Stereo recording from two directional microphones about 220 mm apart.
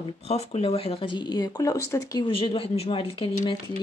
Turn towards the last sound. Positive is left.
turn(degrees=25)  # may be behind; listen again after turning